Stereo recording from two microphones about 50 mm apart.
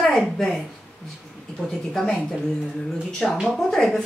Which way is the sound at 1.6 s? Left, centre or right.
Left.